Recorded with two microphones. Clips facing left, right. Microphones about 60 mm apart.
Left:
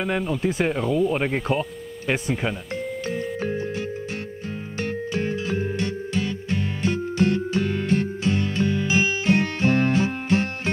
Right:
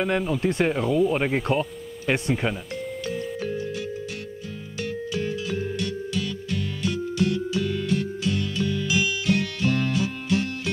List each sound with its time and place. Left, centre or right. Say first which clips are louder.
0.0 s speech: even; centre
4.7 s music: left 2 dB; left